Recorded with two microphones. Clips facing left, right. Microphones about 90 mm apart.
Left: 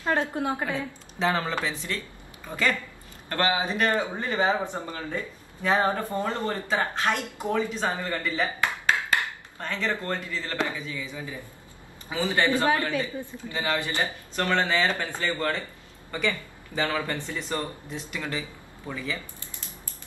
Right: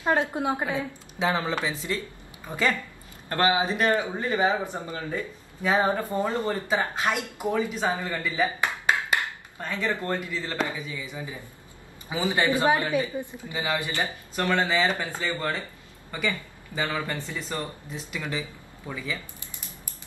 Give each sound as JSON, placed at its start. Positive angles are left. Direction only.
{"t": 0.0, "sound": "speech", "side_deg": -20}